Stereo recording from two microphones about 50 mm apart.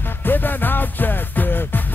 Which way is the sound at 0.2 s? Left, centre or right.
Left.